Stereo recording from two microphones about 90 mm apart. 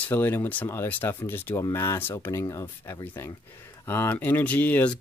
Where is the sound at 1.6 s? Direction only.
35° left (ahead or behind).